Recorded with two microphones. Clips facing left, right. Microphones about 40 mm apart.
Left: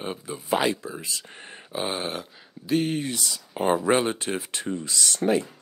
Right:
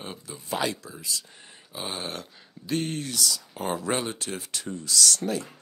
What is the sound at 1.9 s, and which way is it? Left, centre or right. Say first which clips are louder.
Speech: left 4 dB; centre.